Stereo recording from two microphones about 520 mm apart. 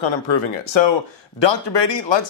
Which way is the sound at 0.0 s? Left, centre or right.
Left.